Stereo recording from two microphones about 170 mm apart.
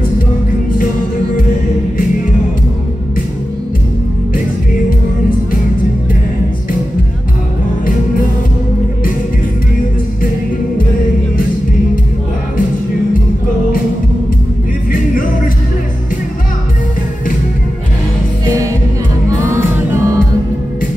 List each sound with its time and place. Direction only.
14.9 s music: 55° left (ahead or behind)
19.5 s music: 15° right (ahead or behind)